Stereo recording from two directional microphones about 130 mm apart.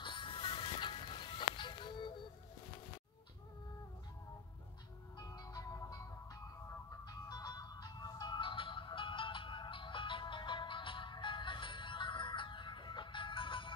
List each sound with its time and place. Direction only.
0.0 s music: 40° left (ahead or behind)
5.1 s music: 30° left (ahead or behind)
7.1 s music: 30° left (ahead or behind)